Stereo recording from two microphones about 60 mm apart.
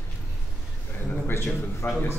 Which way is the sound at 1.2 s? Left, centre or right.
Left.